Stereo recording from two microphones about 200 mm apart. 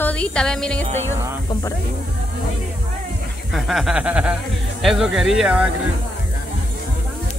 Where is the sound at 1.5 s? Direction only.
15° left (ahead or behind).